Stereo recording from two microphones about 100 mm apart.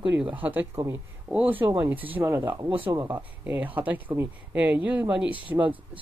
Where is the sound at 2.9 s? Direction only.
25° right (ahead or behind).